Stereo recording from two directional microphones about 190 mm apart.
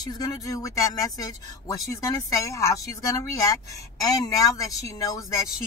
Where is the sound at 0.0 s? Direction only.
20° left (ahead or behind).